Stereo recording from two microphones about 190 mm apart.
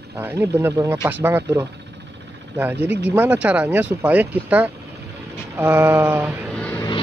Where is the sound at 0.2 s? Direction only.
15° right (ahead or behind).